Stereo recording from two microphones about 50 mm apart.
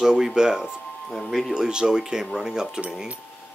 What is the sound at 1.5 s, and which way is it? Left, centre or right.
A woman's voice, centre.